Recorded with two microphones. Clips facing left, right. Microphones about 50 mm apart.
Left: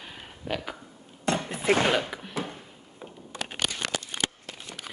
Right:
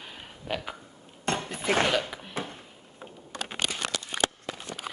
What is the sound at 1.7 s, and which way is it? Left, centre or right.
Speech, centre.